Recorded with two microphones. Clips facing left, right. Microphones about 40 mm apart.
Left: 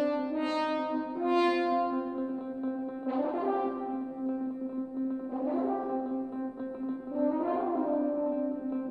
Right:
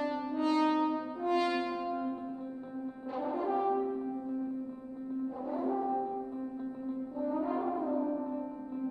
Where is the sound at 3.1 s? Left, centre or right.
Centre.